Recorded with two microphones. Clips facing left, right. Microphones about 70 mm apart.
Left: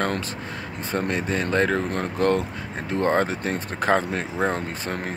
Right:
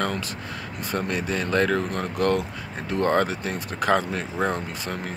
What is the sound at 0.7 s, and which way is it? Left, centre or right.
Speech, left.